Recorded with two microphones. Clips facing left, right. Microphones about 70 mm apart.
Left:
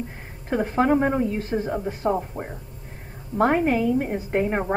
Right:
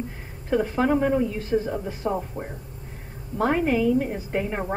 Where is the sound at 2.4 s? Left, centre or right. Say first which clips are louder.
Left 1 dB; centre.